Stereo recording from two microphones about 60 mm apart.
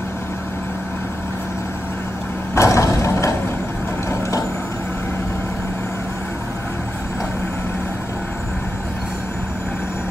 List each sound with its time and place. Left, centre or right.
2.5 s vehicle: left